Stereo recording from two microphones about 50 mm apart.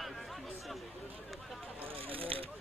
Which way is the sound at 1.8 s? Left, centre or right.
Right.